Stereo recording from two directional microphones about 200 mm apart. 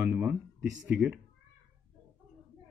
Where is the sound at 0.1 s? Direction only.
5° right (ahead or behind).